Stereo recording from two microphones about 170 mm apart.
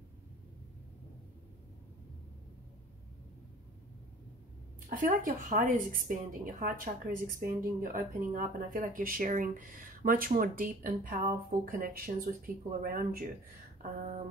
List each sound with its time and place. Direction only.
4.8 s a woman's voice: 50° right (ahead or behind)
13.8 s a woman's voice: 40° right (ahead or behind)